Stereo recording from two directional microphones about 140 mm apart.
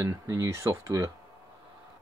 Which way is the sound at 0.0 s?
20° right (ahead or behind).